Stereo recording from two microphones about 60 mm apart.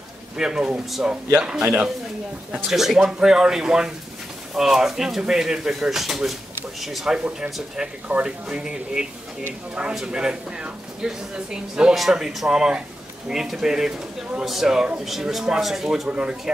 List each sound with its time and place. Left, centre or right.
0.4 s a woman's voice: centre
2.7 s a woman's voice: centre
7.2 s a woman's voice: centre